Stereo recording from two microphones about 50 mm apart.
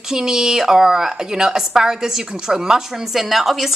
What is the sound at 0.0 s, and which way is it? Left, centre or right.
A woman's voice, centre.